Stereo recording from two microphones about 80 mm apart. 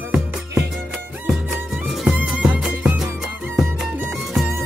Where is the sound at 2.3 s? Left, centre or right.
Centre.